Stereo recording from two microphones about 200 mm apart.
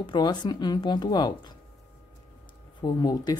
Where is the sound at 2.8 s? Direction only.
20° left (ahead or behind).